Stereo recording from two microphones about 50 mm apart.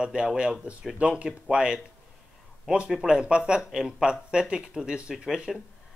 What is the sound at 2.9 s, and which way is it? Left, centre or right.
Speech, centre.